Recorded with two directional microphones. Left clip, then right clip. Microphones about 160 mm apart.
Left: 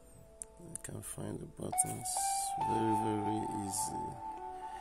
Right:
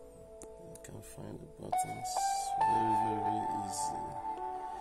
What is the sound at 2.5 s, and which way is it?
Speech, 25° right (ahead or behind).